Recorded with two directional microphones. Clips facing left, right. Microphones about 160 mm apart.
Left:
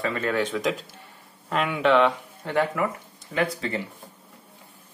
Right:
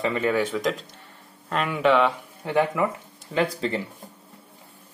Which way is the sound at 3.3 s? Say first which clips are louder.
Right 2 dB; 30° right (ahead or behind).